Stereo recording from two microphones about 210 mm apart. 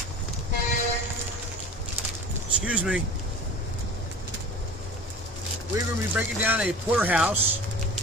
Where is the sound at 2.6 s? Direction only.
5° right (ahead or behind).